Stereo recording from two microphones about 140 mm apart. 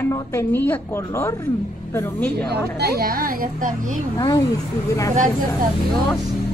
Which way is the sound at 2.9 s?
90° right.